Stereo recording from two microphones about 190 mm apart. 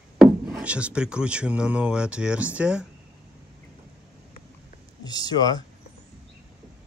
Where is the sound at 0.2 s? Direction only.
5° right (ahead or behind).